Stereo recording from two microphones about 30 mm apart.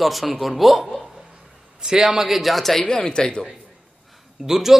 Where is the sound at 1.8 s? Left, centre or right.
Right.